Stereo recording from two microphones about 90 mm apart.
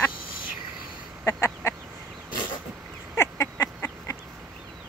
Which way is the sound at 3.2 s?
30° left (ahead or behind).